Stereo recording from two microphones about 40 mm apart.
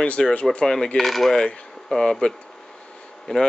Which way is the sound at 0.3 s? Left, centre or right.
Left.